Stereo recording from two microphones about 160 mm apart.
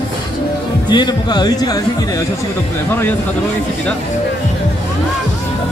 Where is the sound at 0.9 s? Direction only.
25° left (ahead or behind).